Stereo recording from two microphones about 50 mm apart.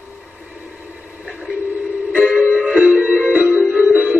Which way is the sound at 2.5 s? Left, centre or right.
Right.